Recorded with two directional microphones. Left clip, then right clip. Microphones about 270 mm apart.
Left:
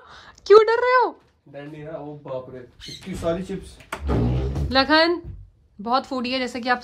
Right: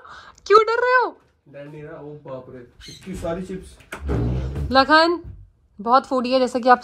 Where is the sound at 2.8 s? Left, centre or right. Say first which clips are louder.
Left 3 dB; centre.